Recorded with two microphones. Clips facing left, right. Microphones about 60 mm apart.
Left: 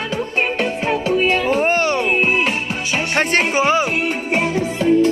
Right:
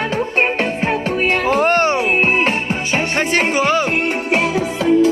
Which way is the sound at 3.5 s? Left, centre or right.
Centre.